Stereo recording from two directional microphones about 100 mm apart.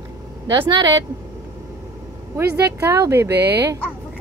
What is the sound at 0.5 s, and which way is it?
Speech, 45° right (ahead or behind).